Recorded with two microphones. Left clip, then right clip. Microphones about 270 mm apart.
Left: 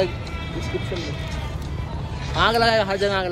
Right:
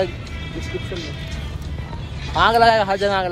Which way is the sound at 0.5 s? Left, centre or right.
Centre.